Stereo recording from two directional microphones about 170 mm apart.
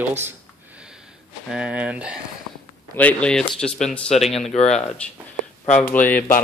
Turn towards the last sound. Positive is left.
turn(degrees=10)  # may be behind; listen again after turning